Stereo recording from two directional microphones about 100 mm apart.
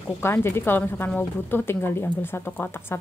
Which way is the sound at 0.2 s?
25° left (ahead or behind).